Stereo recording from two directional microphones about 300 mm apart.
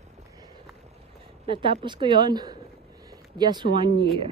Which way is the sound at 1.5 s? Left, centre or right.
Centre.